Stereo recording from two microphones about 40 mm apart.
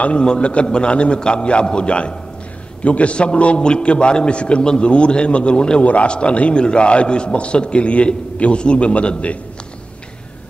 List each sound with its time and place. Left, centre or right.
0.0 s a man's voice: left